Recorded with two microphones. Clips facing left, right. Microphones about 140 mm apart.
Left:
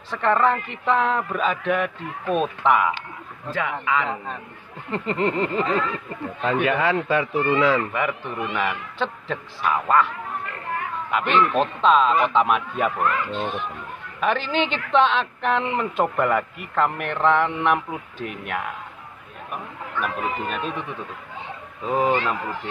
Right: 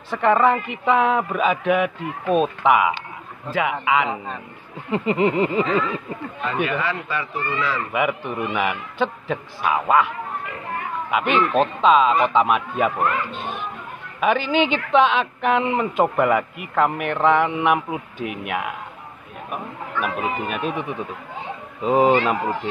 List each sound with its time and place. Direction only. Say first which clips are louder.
0.1 s speech: right 3 dB; 10° right (ahead or behind)
6.4 s speech: left 3 dB; 70° left (ahead or behind)
7.5 s speech: left 6 dB; 55° left (ahead or behind)
7.9 s speech: right 3 dB; 10° right (ahead or behind)
21.8 s speech: right 5 dB; 20° right (ahead or behind)